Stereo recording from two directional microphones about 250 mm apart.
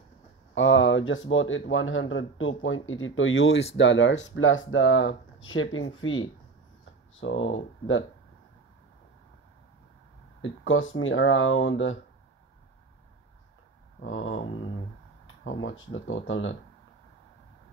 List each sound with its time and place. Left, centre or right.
0.6 s speech: left
10.4 s speech: left
14.0 s speech: left